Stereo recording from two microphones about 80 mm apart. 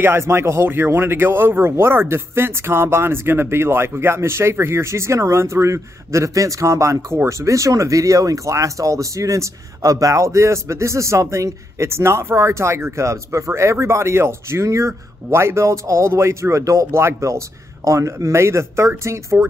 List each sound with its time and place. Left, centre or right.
0.0 s speech: right